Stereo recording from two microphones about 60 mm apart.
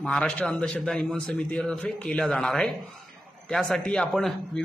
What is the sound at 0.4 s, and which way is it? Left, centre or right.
A man's voice, left.